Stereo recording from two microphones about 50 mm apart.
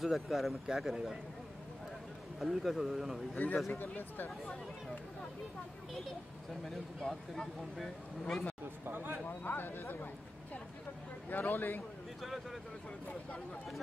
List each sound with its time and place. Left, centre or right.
0.0 s a man's voice: centre
2.4 s a man's voice: centre
3.4 s a man's voice: left
6.6 s speech: centre
8.8 s speech: right
9.3 s speech: left
11.2 s a man's voice: left